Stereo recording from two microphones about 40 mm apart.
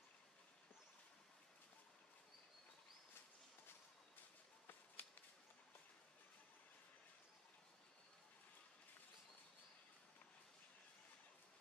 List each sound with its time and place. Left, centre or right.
5.0 s whip: left